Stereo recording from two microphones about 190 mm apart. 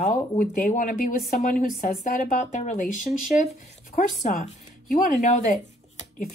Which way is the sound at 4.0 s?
40° left (ahead or behind).